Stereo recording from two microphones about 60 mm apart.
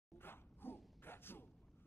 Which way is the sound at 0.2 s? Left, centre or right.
Left.